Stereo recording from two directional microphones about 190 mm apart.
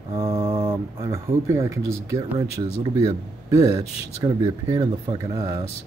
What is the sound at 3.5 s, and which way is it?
Speech, 15° right (ahead or behind).